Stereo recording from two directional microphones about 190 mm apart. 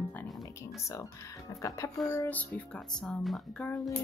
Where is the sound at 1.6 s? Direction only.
15° left (ahead or behind).